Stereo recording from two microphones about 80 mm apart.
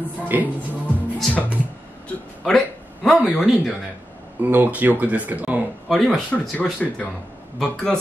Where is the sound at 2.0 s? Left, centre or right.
Centre.